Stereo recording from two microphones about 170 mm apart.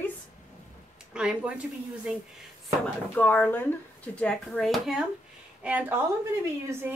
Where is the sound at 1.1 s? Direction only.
5° right (ahead or behind).